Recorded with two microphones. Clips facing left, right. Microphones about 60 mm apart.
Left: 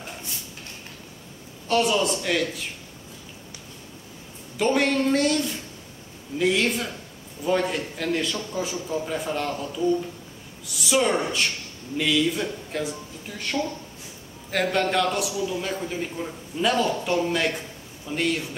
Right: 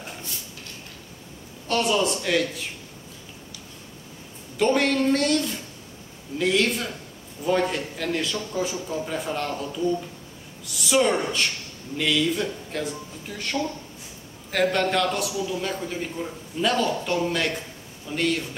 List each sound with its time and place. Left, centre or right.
1.7 s a man's voice: centre
4.6 s a man's voice: centre
15.3 s a man's voice: centre
15.6 s a man's voice: centre